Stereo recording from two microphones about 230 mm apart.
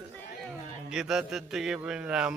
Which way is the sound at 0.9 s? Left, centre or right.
Centre.